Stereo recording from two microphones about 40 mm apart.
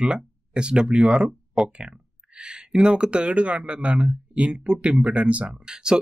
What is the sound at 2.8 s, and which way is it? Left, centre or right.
Speech, right.